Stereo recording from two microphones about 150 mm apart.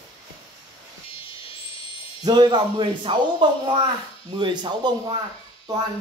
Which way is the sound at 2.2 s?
30° right (ahead or behind).